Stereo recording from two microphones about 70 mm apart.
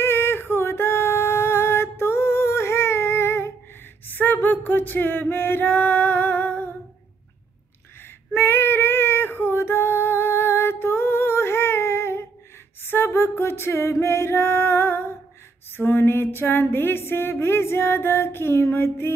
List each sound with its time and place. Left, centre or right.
0.0 s a sound: left
8.3 s female singing: left
12.8 s music: left